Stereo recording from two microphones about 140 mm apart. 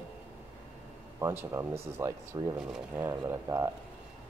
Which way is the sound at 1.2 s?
15° right (ahead or behind).